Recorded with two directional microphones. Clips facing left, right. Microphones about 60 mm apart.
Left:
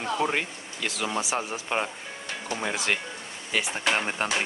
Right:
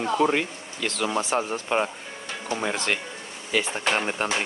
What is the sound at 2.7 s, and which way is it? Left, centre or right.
Speech, centre.